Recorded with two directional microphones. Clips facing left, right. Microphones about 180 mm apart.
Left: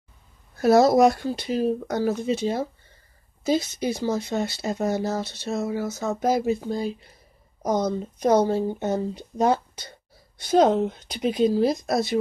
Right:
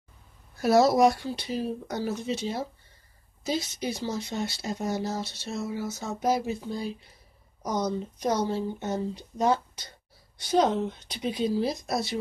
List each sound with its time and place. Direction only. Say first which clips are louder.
0.6 s speech: left 4 dB; 50° left (ahead or behind)